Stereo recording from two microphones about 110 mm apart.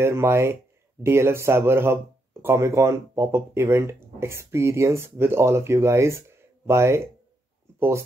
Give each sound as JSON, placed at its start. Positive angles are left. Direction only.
{"t": 0.0, "sound": "speech", "side_deg": -25}